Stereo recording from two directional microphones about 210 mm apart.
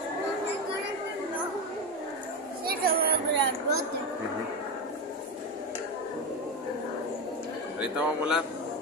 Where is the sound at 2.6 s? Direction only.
45° right (ahead or behind).